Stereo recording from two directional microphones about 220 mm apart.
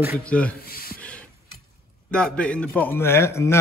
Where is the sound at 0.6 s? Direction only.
45° left (ahead or behind).